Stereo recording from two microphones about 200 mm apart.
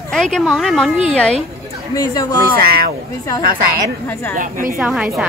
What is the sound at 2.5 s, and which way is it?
Speech, 45° right (ahead or behind).